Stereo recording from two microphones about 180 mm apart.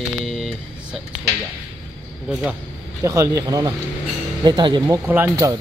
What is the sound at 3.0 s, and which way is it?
Speech, 20° right (ahead or behind).